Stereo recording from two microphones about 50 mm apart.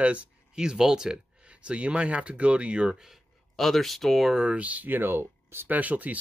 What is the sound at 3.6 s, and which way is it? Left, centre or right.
Speech, centre.